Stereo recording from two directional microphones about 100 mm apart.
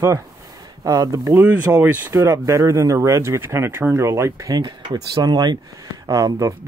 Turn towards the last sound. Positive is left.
turn(degrees=-35)  # may be behind; listen again after turning